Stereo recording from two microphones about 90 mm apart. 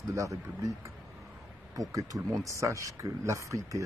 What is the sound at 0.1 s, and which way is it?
Speech, 35° right (ahead or behind).